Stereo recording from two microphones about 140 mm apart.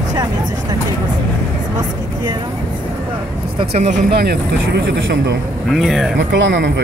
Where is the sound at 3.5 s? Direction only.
50° right (ahead or behind).